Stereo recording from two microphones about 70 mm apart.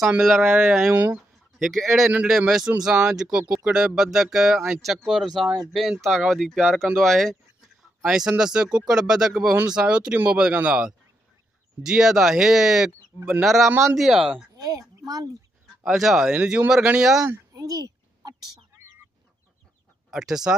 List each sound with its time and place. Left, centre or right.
0.4 s speech: centre
0.8 s speech: right
1.6 s speech: centre
2.0 s speech: centre
8.0 s speech: centre
11.8 s speech: centre
14.6 s speech: right
15.8 s speech: centre
17.6 s a sound: right
20.1 s speech: centre